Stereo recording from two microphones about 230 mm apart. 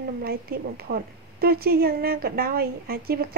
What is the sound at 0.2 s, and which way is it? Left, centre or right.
Speech, right.